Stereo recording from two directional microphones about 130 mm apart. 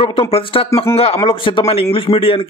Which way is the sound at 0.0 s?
45° left (ahead or behind).